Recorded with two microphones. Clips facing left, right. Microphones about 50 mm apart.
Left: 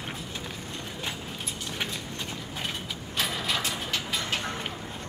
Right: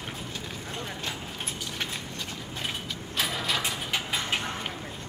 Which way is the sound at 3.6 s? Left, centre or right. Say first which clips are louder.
Right 1 dB; centre.